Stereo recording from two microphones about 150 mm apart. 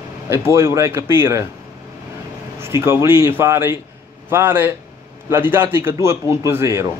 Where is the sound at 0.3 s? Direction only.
15° right (ahead or behind).